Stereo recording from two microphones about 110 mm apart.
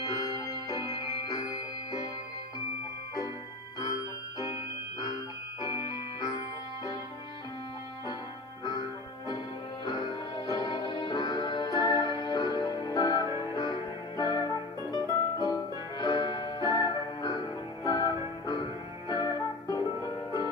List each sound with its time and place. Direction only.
0.0 s music: 35° left (ahead or behind)
5.0 s music: 35° left (ahead or behind)
9.8 s music: 40° left (ahead or behind)